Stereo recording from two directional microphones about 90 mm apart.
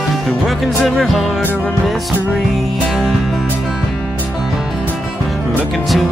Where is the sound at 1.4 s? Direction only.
20° left (ahead or behind).